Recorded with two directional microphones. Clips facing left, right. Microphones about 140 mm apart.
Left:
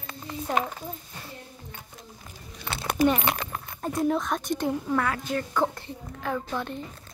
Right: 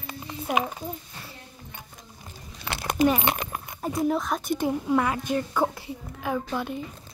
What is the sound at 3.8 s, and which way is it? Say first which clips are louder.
A woman's voice: even; 5° right (ahead or behind).